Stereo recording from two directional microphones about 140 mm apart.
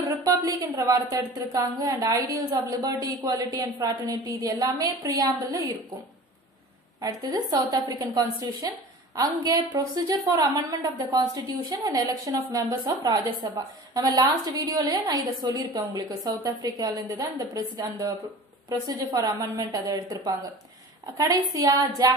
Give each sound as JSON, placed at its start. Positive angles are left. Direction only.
{"t": 0.2, "sound": "a woman's voice", "side_deg": -25}
{"t": 7.0, "sound": "a woman's voice", "side_deg": -25}
{"t": 21.5, "sound": "a woman's voice", "side_deg": -25}